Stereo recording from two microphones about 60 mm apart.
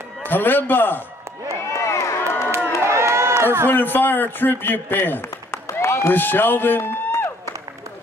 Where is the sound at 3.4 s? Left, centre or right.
Right.